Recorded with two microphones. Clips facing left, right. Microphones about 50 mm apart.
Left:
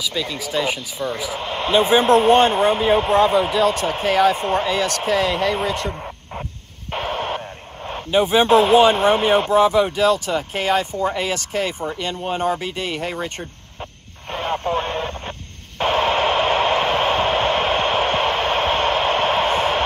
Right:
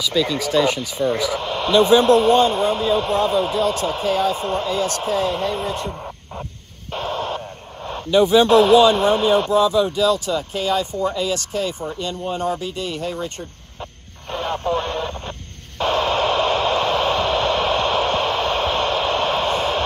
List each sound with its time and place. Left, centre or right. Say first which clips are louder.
0.0 s speech: right 5 dB; centre; by 5.9 s left
5.9 s a sound: left 1 dB; left
6.9 s owl: left 1 dB; left
7.8 s speech: right 2 dB; left
14.3 s radio: even; left